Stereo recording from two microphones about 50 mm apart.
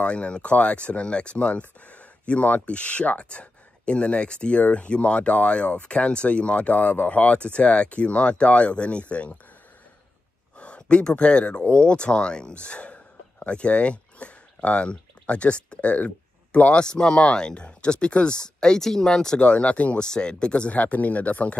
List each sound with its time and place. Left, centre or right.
0.0 s speech: left
10.6 s speech: left
19.4 s speech: left